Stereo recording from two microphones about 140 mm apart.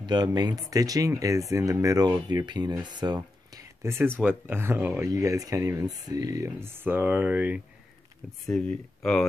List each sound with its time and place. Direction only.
0.0 s speech: 30° right (ahead or behind)
3.5 s a sound: 20° right (ahead or behind)
4.2 s speech: 15° right (ahead or behind)
8.5 s speech: 5° left (ahead or behind)